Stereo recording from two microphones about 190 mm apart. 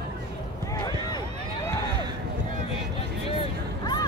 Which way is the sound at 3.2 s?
25° left (ahead or behind).